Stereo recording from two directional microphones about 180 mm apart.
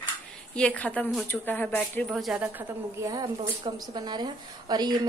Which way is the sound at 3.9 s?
25° right (ahead or behind).